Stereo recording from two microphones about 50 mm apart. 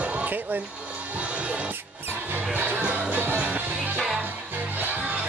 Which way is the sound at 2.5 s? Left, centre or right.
Right.